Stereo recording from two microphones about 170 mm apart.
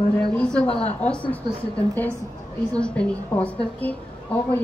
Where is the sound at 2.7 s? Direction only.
5° left (ahead or behind).